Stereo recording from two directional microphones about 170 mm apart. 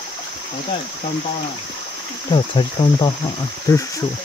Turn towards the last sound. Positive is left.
turn(degrees=20)  # may be behind; listen again after turning